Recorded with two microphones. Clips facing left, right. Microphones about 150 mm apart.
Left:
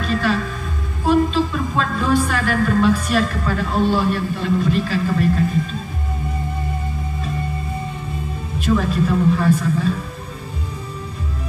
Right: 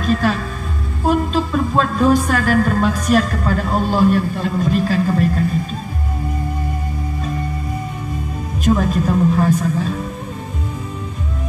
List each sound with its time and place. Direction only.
0.0 s music: 40° right (ahead or behind)
1.0 s a woman's voice: 40° right (ahead or behind)
8.5 s a woman's voice: 40° right (ahead or behind)